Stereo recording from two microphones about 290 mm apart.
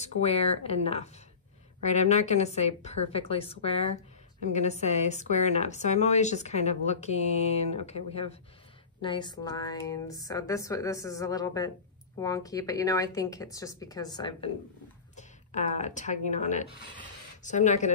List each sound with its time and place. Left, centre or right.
0.0 s a woman's voice: left